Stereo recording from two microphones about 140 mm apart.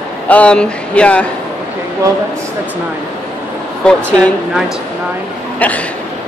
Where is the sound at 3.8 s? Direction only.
5° left (ahead or behind).